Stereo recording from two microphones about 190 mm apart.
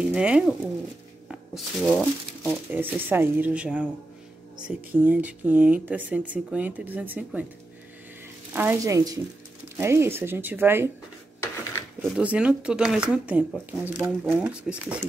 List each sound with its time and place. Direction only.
0.0 s speech: 5° right (ahead or behind)
2.5 s speech: 10° right (ahead or behind)
8.5 s speech: 15° right (ahead or behind)
12.0 s speech: 5° right (ahead or behind)